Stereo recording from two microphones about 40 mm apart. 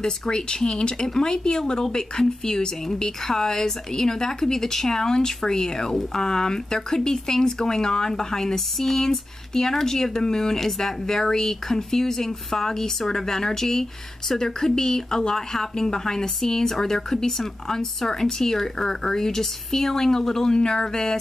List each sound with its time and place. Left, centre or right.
0.0 s speech: centre